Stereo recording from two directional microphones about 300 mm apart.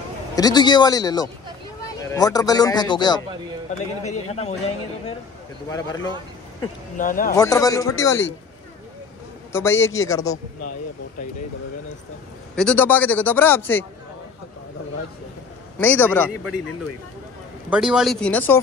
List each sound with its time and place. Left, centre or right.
0.4 s a man's voice: centre
5.7 s a man's voice: centre
7.0 s speech: left
7.3 s a man's voice: centre
9.5 s a man's voice: centre
12.5 s a man's voice: centre
15.8 s speech: centre
17.6 s speech: centre